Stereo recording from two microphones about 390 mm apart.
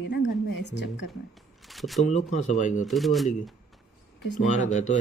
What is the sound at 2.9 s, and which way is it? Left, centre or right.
Speech, centre.